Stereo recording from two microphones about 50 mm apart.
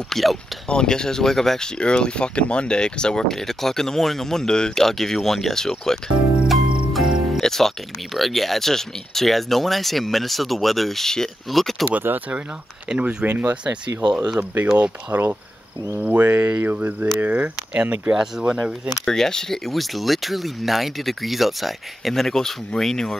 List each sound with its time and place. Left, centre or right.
0.1 s speech: centre
0.7 s speech: centre
1.8 s speech: centre
6.4 s music: centre
7.3 s speech: centre
12.3 s speech: centre
13.2 s speech: right
13.7 s speech: centre
15.1 s speech: right
18.1 s speech: centre
19.0 s speech: centre